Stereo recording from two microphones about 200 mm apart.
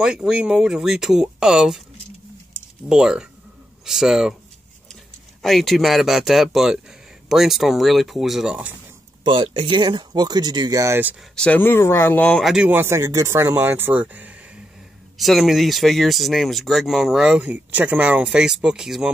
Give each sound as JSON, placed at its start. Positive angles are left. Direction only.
{"t": 0.0, "sound": "speech", "side_deg": -5}
{"t": 2.9, "sound": "speech", "side_deg": -5}
{"t": 5.4, "sound": "speech", "side_deg": 0}
{"t": 9.2, "sound": "speech", "side_deg": -25}
{"t": 11.3, "sound": "speech", "side_deg": 5}